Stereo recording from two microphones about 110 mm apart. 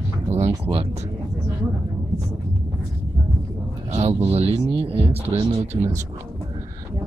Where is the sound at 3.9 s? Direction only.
75° right (ahead or behind); by 5.2 s 55° right (ahead or behind).